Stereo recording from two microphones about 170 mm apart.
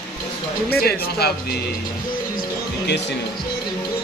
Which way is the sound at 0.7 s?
65° left (ahead or behind).